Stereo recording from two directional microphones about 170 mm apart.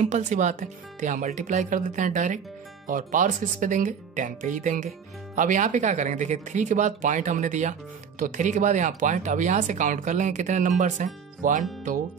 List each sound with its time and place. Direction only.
0.0 s speech: 45° right (ahead or behind)